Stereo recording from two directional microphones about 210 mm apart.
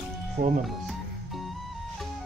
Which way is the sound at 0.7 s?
Centre (ahead or behind).